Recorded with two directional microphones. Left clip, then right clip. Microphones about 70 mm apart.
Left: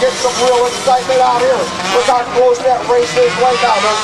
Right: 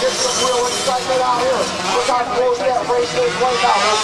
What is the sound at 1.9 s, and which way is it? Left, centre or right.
Speech, left.